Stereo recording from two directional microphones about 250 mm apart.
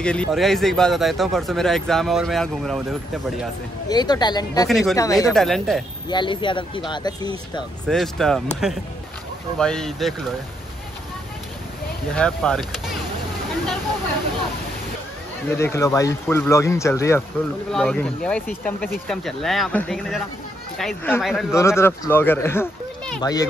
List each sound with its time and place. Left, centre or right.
0.0 s speech: centre
3.9 s speech: centre
4.6 s speech: centre
4.9 s speech: centre
5.3 s speech: centre
6.0 s speech: centre
7.9 s speech: centre
9.6 s speech: centre
12.1 s speech: centre
15.4 s speech: centre
21.5 s speech: centre